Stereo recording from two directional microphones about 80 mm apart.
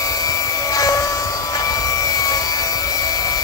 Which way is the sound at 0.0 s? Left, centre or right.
Left.